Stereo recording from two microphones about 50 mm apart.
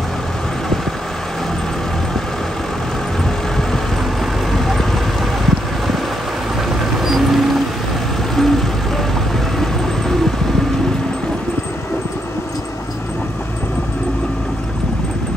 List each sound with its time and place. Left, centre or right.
4.5 s boat: centre
7.0 s a sound: centre
8.4 s vehicle: centre